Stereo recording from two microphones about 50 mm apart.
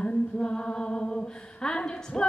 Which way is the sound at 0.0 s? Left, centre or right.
Left.